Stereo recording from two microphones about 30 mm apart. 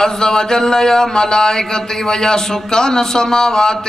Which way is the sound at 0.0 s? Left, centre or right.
Left.